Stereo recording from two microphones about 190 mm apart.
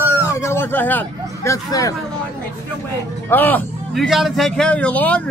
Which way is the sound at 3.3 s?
10° left (ahead or behind).